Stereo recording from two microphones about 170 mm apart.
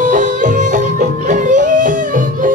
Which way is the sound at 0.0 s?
50° right (ahead or behind).